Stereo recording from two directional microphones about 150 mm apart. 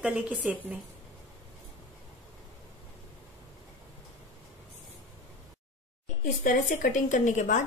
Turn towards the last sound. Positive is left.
turn(degrees=55)  # may be behind; listen again after turning